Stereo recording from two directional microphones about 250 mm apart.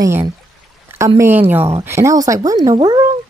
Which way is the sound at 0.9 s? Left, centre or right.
Centre.